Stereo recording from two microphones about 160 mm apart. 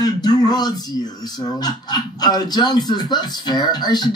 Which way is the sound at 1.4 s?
25° left (ahead or behind).